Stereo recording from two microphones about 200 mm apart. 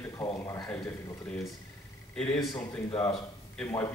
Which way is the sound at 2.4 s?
5° left (ahead or behind).